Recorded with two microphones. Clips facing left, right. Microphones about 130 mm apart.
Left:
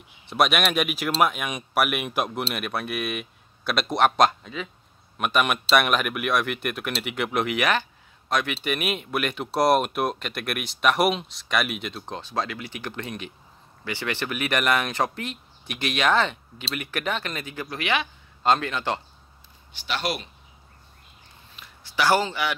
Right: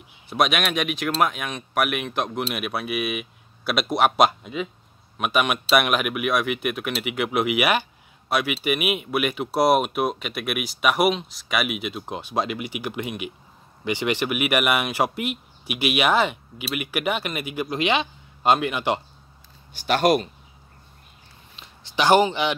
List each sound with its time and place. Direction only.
0.3 s speech: centre (ahead or behind)
2.5 s speech: 5° right (ahead or behind)
19.7 s speech: 45° right (ahead or behind)
21.5 s a sound: 20° right (ahead or behind)